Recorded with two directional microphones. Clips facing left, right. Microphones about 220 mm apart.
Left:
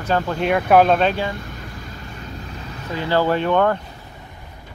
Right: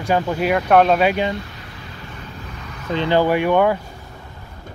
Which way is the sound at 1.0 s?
15° right (ahead or behind).